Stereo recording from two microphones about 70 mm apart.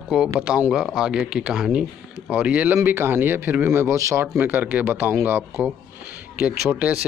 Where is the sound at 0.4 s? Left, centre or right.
Centre.